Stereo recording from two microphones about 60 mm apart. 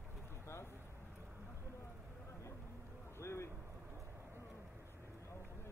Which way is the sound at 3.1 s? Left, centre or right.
Left.